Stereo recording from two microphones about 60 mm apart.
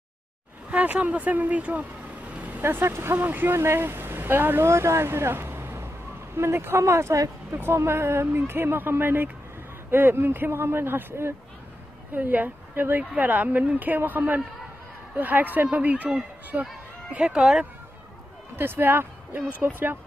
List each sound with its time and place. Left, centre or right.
0.7 s vehicle: right
2.6 s speech: right
3.5 s speech: right
8.4 s speech: right
12.1 s speech: right
18.6 s speech: right